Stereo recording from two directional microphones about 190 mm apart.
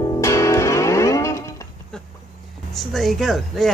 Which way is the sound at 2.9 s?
Centre (ahead or behind).